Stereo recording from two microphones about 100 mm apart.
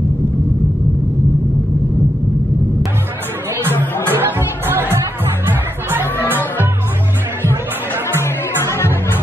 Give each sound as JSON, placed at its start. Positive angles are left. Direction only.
{"t": 4.1, "sound": "music", "side_deg": -20}
{"t": 8.2, "sound": "music", "side_deg": 25}